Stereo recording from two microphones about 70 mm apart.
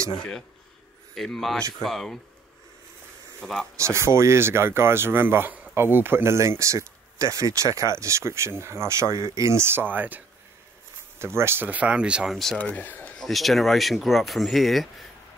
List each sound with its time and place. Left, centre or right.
1.1 s speech: centre
3.3 s speech: centre
3.7 s speech: right
11.1 s speech: right
11.6 s speech: right
12.3 s speech: centre
12.5 s speech: left
13.2 s speech: centre